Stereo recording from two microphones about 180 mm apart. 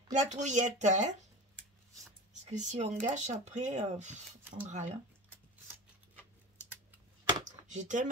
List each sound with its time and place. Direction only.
0.1 s speech: 40° right (ahead or behind)
2.4 s speech: 40° right (ahead or behind)
7.6 s speech: 40° right (ahead or behind)